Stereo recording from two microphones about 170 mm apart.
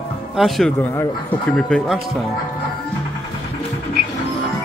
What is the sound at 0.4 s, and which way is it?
Speech, centre (ahead or behind).